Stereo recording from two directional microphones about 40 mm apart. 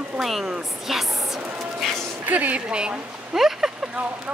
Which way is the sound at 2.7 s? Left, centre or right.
Right.